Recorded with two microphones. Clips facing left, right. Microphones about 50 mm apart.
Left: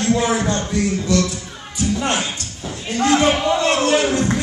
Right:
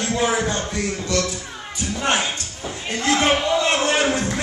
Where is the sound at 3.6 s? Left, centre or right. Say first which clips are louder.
Left 2 dB; right.